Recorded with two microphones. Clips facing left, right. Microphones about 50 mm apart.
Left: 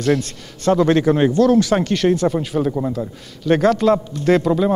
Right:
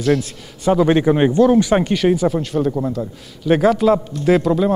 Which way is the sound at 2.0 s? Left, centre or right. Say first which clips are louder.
Right 1 dB; centre.